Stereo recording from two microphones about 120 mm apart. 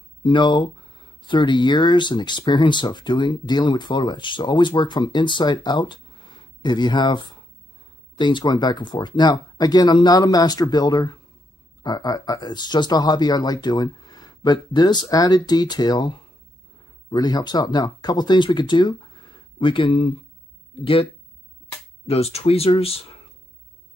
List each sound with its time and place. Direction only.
0.2 s speech: 40° left (ahead or behind)
22.0 s speech: 60° left (ahead or behind)